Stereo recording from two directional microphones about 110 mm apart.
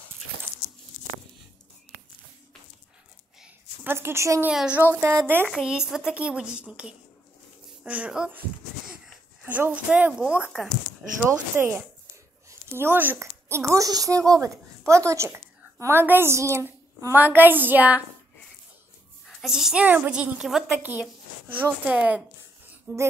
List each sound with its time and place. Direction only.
3.8 s speech: 20° right (ahead or behind)
4.5 s a woman's voice: 10° right (ahead or behind)
4.9 s speech: 20° right (ahead or behind)
5.5 s a woman's voice: 5° right (ahead or behind)
9.4 s a woman's voice: 15° right (ahead or behind)
11.5 s a woman's voice: 20° right (ahead or behind)
19.2 s a woman's voice: 5° right (ahead or behind)
20.8 s a woman's voice: 15° right (ahead or behind)
22.9 s speech: 25° right (ahead or behind)